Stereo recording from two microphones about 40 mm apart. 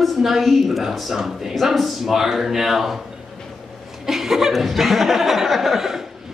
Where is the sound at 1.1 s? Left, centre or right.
Centre.